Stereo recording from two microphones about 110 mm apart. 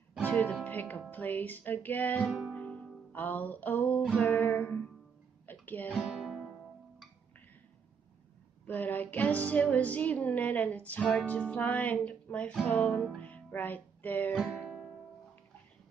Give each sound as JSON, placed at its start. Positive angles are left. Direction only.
{"t": 0.2, "sound": "music", "side_deg": 15}
{"t": 6.0, "sound": "music", "side_deg": 0}
{"t": 8.6, "sound": "music", "side_deg": 15}